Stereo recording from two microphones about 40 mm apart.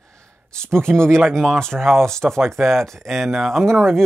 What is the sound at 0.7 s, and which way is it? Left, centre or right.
Speech, right.